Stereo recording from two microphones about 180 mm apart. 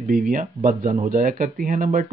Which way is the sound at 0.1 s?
50° right (ahead or behind).